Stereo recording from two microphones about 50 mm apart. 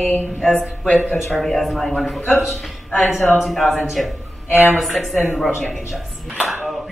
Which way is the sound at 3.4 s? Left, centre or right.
Centre.